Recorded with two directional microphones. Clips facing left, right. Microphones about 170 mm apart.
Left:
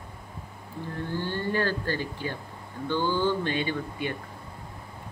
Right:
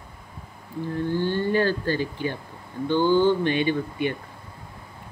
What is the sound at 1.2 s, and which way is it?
Speech, 20° right (ahead or behind).